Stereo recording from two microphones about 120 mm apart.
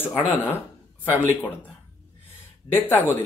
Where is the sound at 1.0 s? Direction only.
15° left (ahead or behind).